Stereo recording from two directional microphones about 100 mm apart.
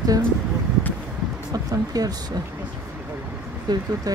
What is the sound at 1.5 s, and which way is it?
Speech, 40° right (ahead or behind).